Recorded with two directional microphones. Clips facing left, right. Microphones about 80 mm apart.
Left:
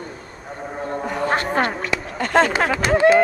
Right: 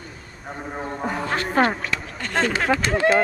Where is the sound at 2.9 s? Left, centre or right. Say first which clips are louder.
Left 6 dB; centre.